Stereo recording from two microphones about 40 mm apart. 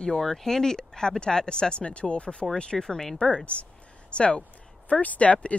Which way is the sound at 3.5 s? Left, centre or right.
Left.